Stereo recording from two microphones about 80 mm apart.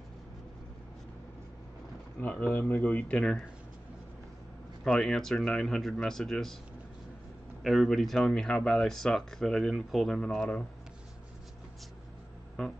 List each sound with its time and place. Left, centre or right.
2.1 s speech: centre
4.8 s speech: centre
7.6 s speech: centre